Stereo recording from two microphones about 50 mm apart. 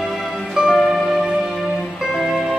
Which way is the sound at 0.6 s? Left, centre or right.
Centre.